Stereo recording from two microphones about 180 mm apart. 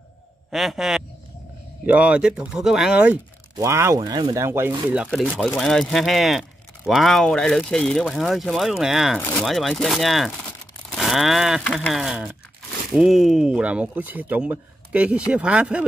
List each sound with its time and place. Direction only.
0.5 s speech: centre (ahead or behind)